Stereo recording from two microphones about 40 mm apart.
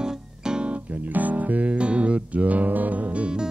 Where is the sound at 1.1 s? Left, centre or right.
Right.